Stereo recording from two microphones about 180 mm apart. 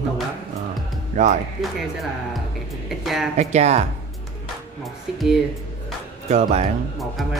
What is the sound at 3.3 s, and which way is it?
Speech, 40° right (ahead or behind).